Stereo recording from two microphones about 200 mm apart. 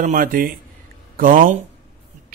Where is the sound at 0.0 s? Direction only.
45° right (ahead or behind).